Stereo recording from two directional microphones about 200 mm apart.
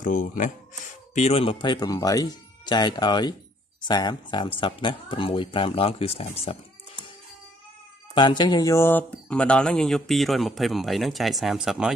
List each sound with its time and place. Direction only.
0.0 s speech: 40° left (ahead or behind)
8.1 s speech: 25° left (ahead or behind); by 11.9 s centre (ahead or behind)